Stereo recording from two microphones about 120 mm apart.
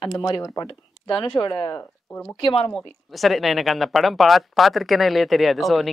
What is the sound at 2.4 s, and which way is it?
Speech, 50° left (ahead or behind).